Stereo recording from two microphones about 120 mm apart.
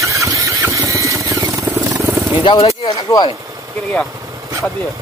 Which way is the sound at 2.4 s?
55° left (ahead or behind).